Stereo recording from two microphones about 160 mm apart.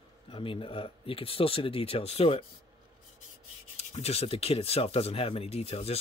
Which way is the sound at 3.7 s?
40° left (ahead or behind).